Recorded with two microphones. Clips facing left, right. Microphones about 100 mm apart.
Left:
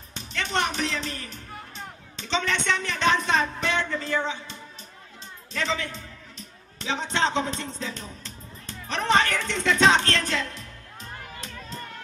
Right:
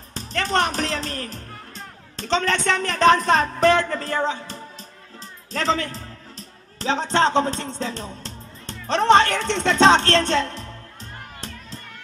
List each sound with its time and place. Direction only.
0.1 s speech: 40° right (ahead or behind)
5.5 s music: 35° right (ahead or behind)